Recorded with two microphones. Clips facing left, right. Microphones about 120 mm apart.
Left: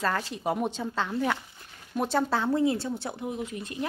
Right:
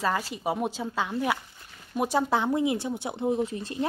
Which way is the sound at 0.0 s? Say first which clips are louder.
Right 1 dB; 5° right (ahead or behind).